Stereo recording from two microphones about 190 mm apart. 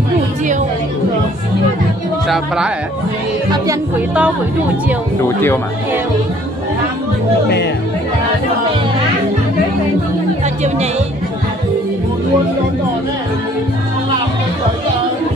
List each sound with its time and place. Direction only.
2.2 s a man's voice: centre (ahead or behind)
3.6 s music: 10° right (ahead or behind)
7.4 s speech: 60° left (ahead or behind)
10.4 s music: 35° right (ahead or behind)